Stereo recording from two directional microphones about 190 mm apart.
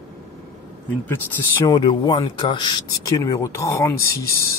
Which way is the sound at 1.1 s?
10° left (ahead or behind).